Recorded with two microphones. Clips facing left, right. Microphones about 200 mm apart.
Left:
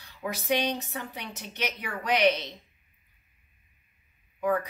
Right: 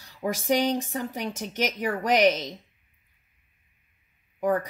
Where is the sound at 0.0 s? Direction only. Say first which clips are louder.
Right 5 dB; 45° right (ahead or behind).